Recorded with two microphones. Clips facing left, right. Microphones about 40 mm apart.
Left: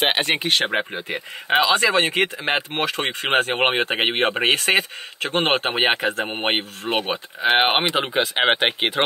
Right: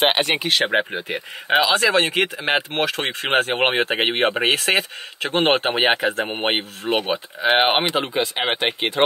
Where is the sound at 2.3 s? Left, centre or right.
Centre.